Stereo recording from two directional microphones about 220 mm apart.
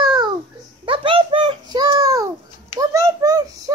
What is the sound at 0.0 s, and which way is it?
Babbling, 20° right (ahead or behind).